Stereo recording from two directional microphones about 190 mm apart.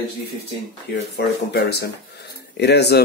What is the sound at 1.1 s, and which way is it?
Speech, 60° left (ahead or behind).